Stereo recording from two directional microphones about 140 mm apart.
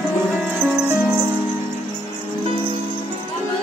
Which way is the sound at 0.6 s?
Centre (ahead or behind).